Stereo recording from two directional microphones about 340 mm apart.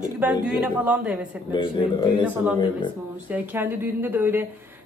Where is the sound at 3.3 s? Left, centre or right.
Centre.